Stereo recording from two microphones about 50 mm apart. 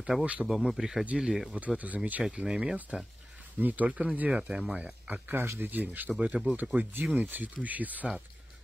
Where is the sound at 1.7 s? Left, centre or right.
Right.